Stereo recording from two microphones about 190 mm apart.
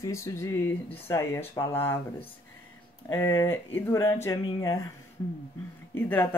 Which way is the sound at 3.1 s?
15° left (ahead or behind).